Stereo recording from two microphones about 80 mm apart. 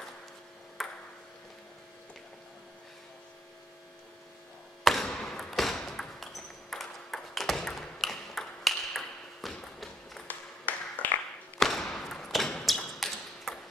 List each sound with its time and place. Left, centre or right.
0.8 s ping: centre
4.8 s basketball bounce: centre
10.2 s a sound: centre
11.6 s tap: centre